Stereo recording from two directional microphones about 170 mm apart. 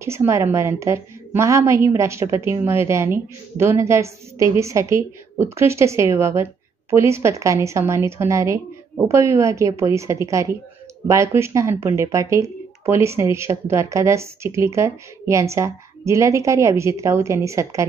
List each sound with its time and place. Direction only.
0.0 s a woman's voice: 15° right (ahead or behind)